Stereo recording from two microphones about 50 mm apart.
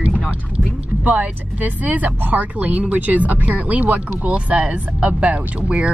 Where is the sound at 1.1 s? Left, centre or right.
Right.